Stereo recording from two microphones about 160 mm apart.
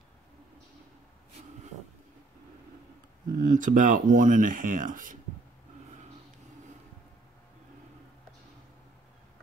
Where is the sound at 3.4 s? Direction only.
55° right (ahead or behind).